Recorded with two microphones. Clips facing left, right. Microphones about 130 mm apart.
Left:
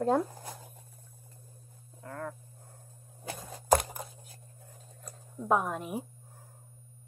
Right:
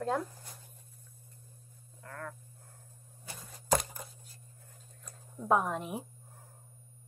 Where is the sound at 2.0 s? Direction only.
20° left (ahead or behind).